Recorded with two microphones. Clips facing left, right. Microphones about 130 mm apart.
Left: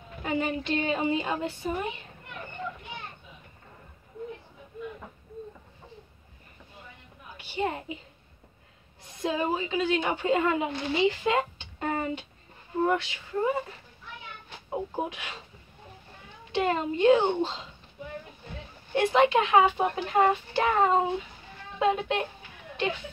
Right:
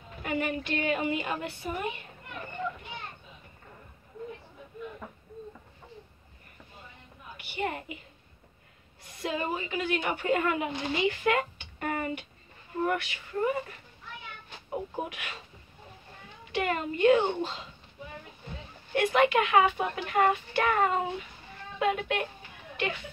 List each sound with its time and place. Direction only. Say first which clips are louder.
0.2 s a child's voice: left 2 dB; 25° left (ahead or behind)
7.5 s a child's voice: left 3 dB; 25° left (ahead or behind)
9.2 s a child's voice: left 4 dB; 20° left (ahead or behind)
16.5 s a child's voice: left 3 dB; 25° left (ahead or behind)
18.9 s a child's voice: left 2 dB; 25° left (ahead or behind)